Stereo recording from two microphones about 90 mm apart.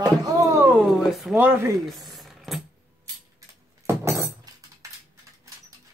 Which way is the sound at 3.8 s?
35° right (ahead or behind).